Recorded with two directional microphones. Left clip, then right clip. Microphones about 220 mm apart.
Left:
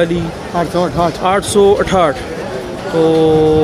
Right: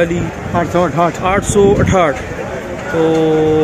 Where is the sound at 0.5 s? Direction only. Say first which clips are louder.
Right 1 dB; 30° right (ahead or behind).